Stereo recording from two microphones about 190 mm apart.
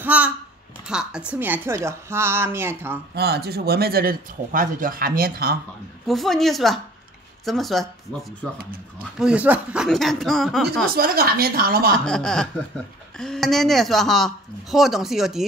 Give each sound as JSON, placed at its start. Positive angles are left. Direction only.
{"t": 0.0, "sound": "a woman's voice", "side_deg": -10}
{"t": 3.2, "sound": "speech", "side_deg": -55}
{"t": 6.0, "sound": "speech", "side_deg": 0}
{"t": 10.9, "sound": "speech", "side_deg": -50}
{"t": 12.0, "sound": "speech", "side_deg": 5}